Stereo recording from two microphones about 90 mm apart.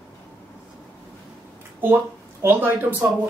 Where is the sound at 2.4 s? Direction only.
25° right (ahead or behind).